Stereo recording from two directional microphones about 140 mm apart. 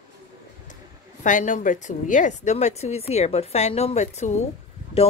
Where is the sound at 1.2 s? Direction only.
65° left (ahead or behind).